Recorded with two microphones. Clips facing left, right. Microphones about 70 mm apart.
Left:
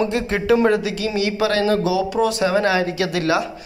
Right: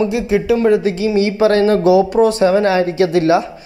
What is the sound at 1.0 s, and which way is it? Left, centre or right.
Speech, right.